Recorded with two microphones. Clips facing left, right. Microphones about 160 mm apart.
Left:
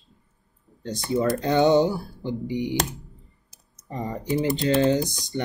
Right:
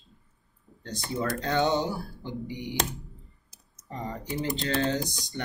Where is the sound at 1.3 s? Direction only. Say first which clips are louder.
Left 7 dB; 15° left (ahead or behind).